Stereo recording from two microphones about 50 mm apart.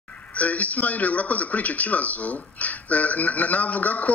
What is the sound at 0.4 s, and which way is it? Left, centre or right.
Speech, left.